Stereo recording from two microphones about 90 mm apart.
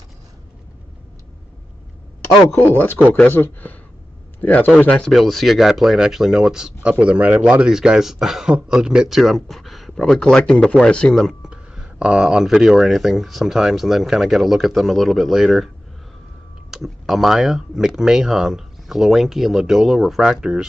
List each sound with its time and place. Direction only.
2.5 s speech: 20° left (ahead or behind)
5.1 s speech: centre (ahead or behind)
11.4 s speech: 10° right (ahead or behind)
16.7 s speech: 5° right (ahead or behind)